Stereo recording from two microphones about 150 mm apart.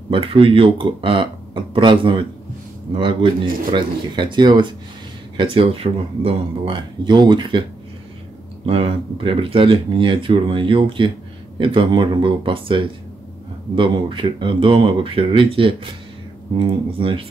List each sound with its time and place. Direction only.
0.1 s speech: 35° right (ahead or behind)
8.6 s speech: 40° right (ahead or behind)